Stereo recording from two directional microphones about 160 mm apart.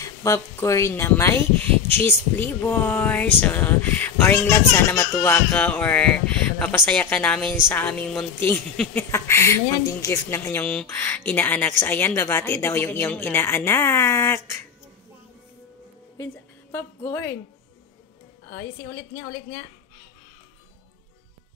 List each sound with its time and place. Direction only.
0.0 s speech: 20° left (ahead or behind)
16.7 s speech: 15° left (ahead or behind)
18.5 s speech: 15° left (ahead or behind)